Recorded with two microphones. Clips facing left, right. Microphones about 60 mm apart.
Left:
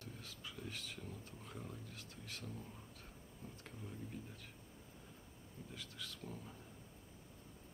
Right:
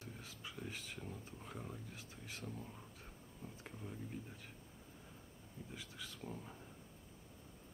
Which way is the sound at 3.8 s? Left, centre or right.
Centre.